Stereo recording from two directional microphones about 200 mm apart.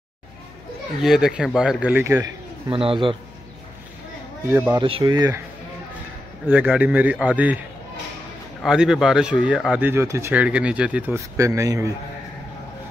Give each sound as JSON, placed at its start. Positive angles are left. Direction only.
{"t": 1.0, "sound": "speech", "side_deg": -5}
{"t": 2.7, "sound": "speech", "side_deg": -25}
{"t": 4.5, "sound": "speech", "side_deg": -10}
{"t": 4.7, "sound": "speech", "side_deg": -25}
{"t": 6.4, "sound": "speech", "side_deg": -5}
{"t": 8.6, "sound": "speech", "side_deg": 0}